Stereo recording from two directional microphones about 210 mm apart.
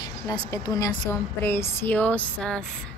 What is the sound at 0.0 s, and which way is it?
Speech, 15° left (ahead or behind).